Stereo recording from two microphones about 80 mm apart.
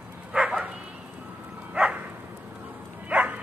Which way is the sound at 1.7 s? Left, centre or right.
Centre.